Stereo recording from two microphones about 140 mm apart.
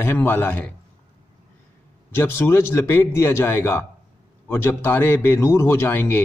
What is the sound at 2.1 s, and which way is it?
A man's voice, 15° left (ahead or behind).